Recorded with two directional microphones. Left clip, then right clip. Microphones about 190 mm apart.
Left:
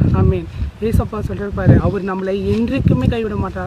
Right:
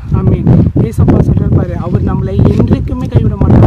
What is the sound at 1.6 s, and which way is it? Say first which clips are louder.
Speech: even; 10° right (ahead or behind).